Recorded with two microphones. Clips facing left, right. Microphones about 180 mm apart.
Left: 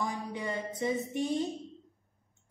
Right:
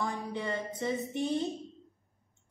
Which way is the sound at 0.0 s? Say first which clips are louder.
Even; 15° left (ahead or behind).